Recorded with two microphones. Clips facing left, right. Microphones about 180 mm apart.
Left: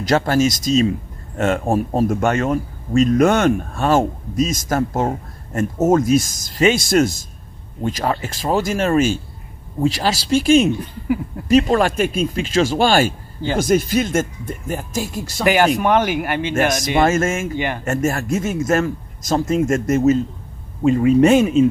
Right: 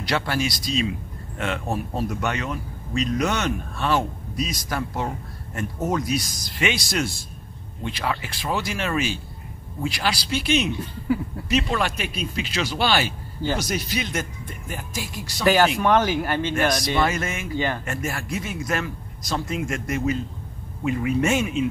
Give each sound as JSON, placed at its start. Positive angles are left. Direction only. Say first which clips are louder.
{"t": 0.0, "sound": "speech", "louder": "left 9 dB", "side_deg": 45}
{"t": 15.4, "sound": "speech", "louder": "left 3 dB", "side_deg": 15}
{"t": 16.5, "sound": "speech", "louder": "left 6 dB", "side_deg": 45}
{"t": 20.8, "sound": "speech", "louder": "left 10 dB", "side_deg": 30}